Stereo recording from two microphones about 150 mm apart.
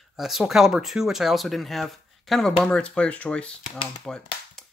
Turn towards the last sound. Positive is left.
turn(degrees=5)  # may be behind; listen again after turning